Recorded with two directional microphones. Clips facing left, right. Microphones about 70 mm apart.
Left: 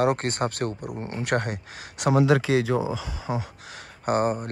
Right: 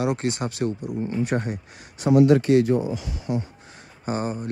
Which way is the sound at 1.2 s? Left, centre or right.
Left.